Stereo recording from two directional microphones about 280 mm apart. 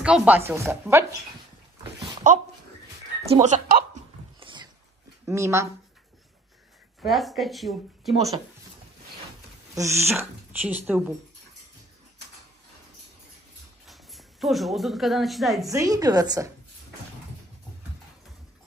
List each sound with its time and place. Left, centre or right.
0.0 s speech: centre
1.8 s a sound: right
3.2 s speech: right
4.4 s dog: centre
5.2 s speech: centre
7.1 s speech: centre
9.8 s speech: centre
13.8 s a woman's voice: centre
15.6 s speech: centre